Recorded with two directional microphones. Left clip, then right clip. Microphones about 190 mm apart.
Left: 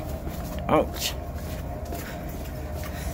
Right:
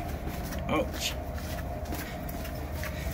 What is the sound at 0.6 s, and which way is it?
Speech, 35° left (ahead or behind).